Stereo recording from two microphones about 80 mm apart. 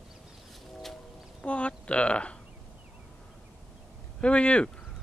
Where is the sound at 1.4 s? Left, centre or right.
Centre.